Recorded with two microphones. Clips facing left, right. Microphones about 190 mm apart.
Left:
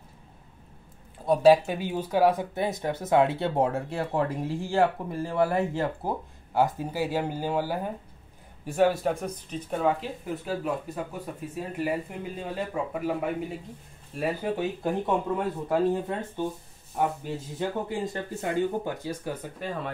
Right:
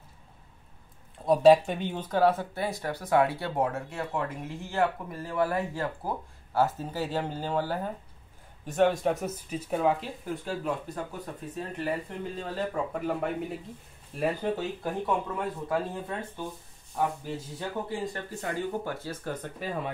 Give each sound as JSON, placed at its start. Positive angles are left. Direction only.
{"t": 1.1, "sound": "speech", "side_deg": 0}
{"t": 15.7, "sound": "speech", "side_deg": 20}
{"t": 19.6, "sound": "speech", "side_deg": -10}